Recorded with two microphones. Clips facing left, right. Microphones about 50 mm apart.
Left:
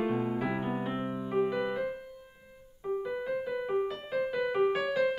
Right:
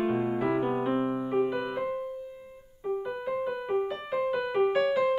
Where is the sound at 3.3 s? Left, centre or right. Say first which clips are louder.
Right 3 dB; centre.